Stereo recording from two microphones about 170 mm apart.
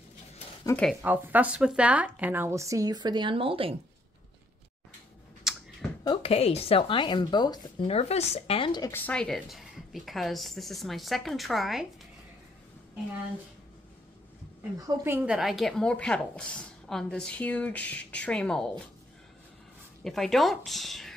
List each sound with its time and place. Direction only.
0.7 s speech: 15° left (ahead or behind)
1.0 s a woman's voice: 10° right (ahead or behind); by 3.7 s 30° right (ahead or behind)
5.4 s a sound: centre (ahead or behind)
6.0 s a woman's voice: 35° left (ahead or behind)
7.9 s speech: 40° left (ahead or behind)
8.9 s a woman's voice: 5° left (ahead or behind)
14.9 s a woman's voice: 10° right (ahead or behind); by 18.7 s 5° left (ahead or behind)
20.0 s a woman's voice: centre (ahead or behind)